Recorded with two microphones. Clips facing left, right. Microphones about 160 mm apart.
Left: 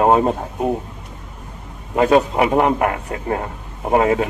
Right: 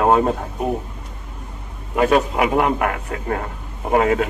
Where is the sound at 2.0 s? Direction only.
30° left (ahead or behind).